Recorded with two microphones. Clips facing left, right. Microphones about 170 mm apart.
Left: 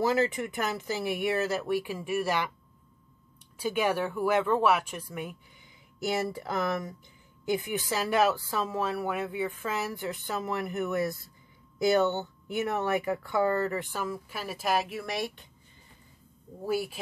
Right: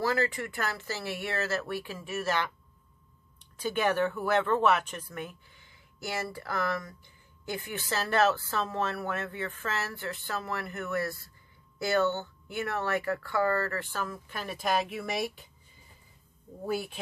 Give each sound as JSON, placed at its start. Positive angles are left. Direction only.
{"t": 0.0, "sound": "speech", "side_deg": 20}
{"t": 3.5, "sound": "speech", "side_deg": 10}
{"t": 16.6, "sound": "speech", "side_deg": 5}